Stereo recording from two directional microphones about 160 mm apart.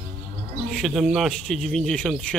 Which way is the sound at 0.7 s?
5° left (ahead or behind).